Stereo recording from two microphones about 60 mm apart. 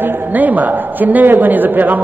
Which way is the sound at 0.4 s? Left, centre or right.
Right.